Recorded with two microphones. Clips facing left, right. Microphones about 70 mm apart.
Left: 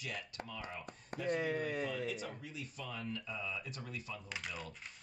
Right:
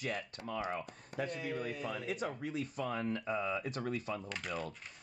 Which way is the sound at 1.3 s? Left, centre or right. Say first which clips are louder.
Left 4 dB; left.